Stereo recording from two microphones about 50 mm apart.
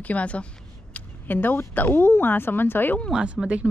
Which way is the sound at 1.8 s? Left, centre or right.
Left.